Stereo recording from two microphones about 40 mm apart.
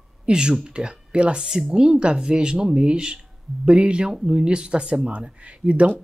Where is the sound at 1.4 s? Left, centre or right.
Centre.